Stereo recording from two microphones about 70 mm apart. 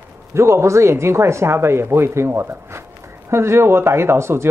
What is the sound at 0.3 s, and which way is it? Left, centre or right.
Speech, right.